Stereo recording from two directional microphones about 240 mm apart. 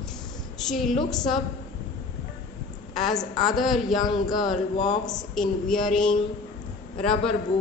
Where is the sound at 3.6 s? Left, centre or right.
Centre.